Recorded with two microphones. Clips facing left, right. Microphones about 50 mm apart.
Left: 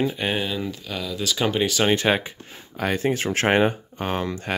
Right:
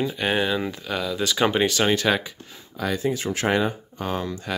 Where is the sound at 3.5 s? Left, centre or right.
Left.